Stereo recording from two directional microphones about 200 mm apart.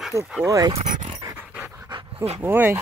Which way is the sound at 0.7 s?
35° right (ahead or behind).